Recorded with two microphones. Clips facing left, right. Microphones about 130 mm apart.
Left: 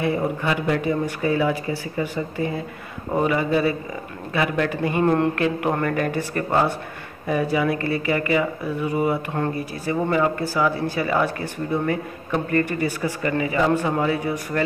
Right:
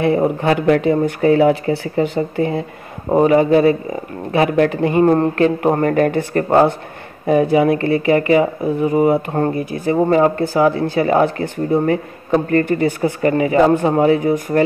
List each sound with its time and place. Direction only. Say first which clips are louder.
0.4 s speech: right 8 dB; 55° right (ahead or behind)
1.7 s speech: right 8 dB; 30° right (ahead or behind)
2.3 s speech: right 7 dB; 55° right (ahead or behind)
3.1 s speech: right 9 dB; 40° right (ahead or behind)
5.0 s speech: right 5 dB; 35° right (ahead or behind)